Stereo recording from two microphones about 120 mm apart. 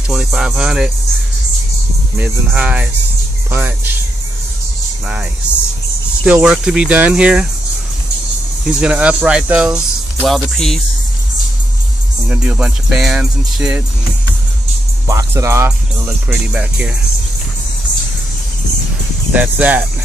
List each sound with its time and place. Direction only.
0.1 s speech: 5° right (ahead or behind)
2.1 s speech: 15° right (ahead or behind)
6.2 s speech: 10° right (ahead or behind)
8.6 s speech: 10° right (ahead or behind)
12.3 s speech: 5° right (ahead or behind)
15.0 s speech: 25° right (ahead or behind)
16.3 s speech: 10° right (ahead or behind)
19.3 s speech: 15° right (ahead or behind)